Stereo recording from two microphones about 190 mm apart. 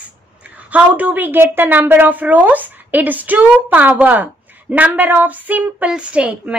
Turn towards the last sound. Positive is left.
turn(degrees=-5)  # may be behind; listen again after turning